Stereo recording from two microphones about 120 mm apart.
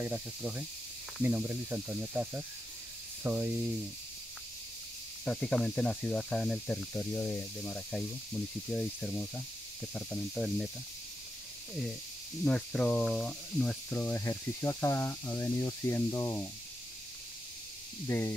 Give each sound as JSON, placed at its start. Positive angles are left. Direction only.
{"t": 0.0, "sound": "speech", "side_deg": -10}
{"t": 5.2, "sound": "speech", "side_deg": 10}
{"t": 12.4, "sound": "speech", "side_deg": 10}
{"t": 18.0, "sound": "speech", "side_deg": 20}